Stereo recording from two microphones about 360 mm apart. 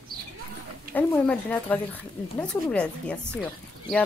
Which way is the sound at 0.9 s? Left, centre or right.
Centre.